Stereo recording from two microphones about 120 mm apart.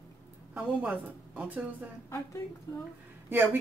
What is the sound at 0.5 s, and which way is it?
Speech, 15° right (ahead or behind).